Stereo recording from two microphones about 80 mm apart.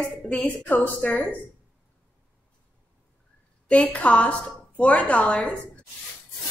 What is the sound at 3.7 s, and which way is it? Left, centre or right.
A woman's voice, centre.